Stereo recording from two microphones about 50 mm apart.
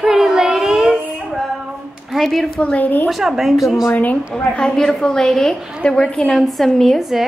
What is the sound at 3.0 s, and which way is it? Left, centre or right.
Speech, centre.